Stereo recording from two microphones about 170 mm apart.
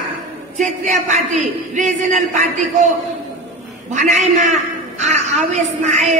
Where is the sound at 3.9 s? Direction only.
45° right (ahead or behind).